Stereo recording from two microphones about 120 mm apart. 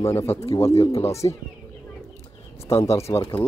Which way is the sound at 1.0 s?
25° left (ahead or behind).